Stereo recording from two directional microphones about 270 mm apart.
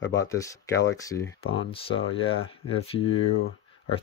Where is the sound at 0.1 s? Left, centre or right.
Centre.